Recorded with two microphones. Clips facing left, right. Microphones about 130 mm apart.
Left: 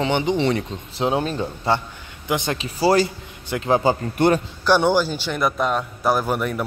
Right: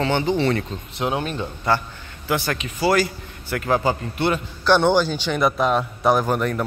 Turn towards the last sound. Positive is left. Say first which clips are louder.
# right 1 dB
turn(degrees=5)  # may be behind; listen again after turning